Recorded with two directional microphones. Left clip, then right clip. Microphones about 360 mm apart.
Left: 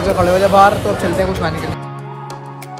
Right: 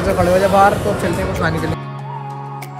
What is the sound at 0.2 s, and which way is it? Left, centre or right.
Speech, centre.